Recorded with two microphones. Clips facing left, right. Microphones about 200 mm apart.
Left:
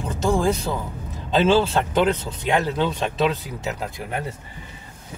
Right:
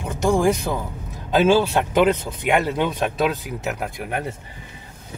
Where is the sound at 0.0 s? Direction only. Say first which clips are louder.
Right 2 dB; 15° right (ahead or behind).